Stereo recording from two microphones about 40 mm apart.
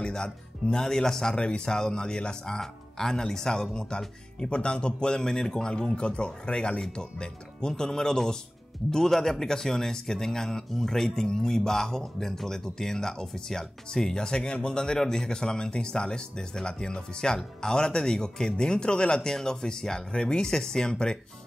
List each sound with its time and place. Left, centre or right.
0.0 s speech: centre
1.3 s speech: left